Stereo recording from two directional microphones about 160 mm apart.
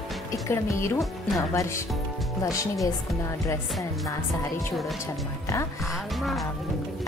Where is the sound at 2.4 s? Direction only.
20° left (ahead or behind).